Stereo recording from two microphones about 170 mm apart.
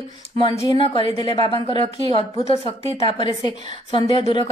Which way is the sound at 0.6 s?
25° left (ahead or behind).